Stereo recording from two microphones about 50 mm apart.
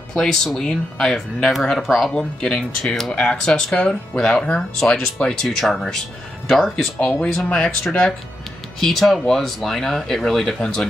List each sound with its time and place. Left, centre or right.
0.1 s speech: centre
1.1 s speech: centre
2.1 s speech: centre
7.0 s speech: centre
8.7 s speech: centre